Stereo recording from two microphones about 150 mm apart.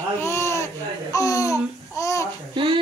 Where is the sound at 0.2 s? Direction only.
20° left (ahead or behind).